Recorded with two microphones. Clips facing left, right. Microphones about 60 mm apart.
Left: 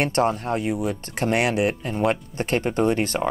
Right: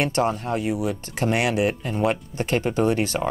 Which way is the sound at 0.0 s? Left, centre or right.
Left.